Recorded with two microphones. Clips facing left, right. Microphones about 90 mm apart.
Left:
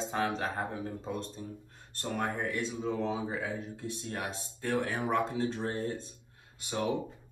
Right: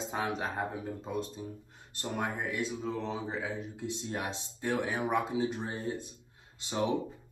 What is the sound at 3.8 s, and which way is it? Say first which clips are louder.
Speech: right 1 dB; 20° right (ahead or behind).